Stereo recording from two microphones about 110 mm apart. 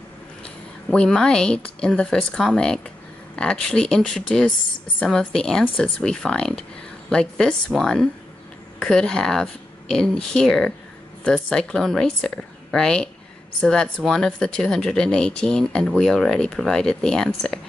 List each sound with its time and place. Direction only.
0.4 s a woman's voice: 5° left (ahead or behind)